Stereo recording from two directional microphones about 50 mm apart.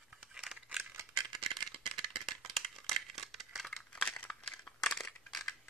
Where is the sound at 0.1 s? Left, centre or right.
Centre.